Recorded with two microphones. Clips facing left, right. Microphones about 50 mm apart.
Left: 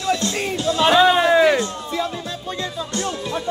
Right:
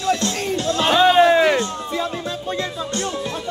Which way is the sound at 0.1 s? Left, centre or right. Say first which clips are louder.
Right 1 dB; right.